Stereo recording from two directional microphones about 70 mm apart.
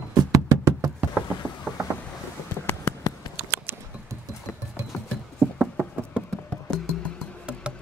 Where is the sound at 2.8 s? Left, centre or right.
Left.